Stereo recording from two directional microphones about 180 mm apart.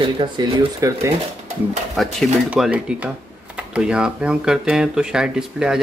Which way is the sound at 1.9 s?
Centre (ahead or behind).